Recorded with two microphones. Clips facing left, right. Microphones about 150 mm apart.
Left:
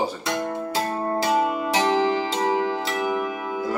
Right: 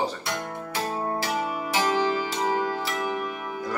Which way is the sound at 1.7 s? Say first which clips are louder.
Left 3 dB; 25° left (ahead or behind).